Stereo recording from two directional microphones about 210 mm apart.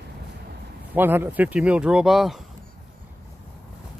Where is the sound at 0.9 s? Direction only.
10° right (ahead or behind).